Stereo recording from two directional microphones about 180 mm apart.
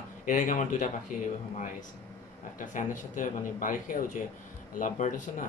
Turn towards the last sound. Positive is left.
turn(degrees=45)  # may be behind; listen again after turning